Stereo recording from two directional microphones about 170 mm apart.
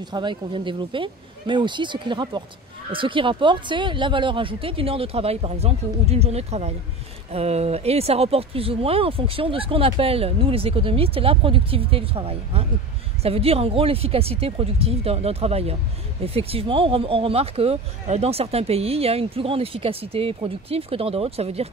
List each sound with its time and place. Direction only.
0.0 s speech: 25° right (ahead or behind)